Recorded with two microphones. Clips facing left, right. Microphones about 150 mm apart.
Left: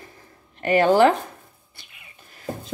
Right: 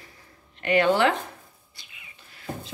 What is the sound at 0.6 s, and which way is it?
Speech, 40° left (ahead or behind).